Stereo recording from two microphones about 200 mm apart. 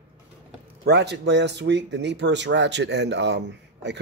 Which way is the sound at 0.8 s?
60° right (ahead or behind).